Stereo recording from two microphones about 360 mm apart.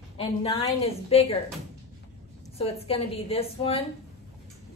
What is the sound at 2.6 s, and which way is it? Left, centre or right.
A woman's voice, centre.